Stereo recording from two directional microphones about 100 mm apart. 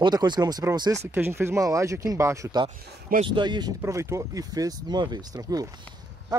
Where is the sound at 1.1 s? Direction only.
25° right (ahead or behind).